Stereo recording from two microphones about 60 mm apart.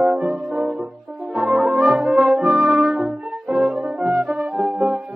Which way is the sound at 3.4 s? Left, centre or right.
Centre.